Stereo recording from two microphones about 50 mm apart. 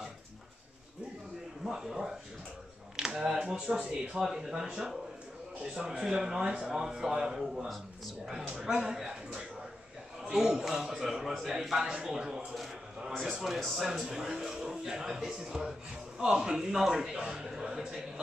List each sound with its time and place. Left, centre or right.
1.6 s speech: centre
4.2 s a man's voice: centre